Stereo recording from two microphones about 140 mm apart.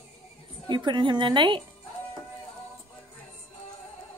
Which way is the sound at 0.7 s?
35° right (ahead or behind).